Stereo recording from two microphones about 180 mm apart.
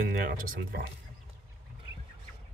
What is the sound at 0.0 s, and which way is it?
Speech, 50° right (ahead or behind).